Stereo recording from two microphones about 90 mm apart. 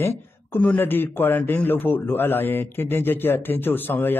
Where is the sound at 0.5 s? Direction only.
20° left (ahead or behind).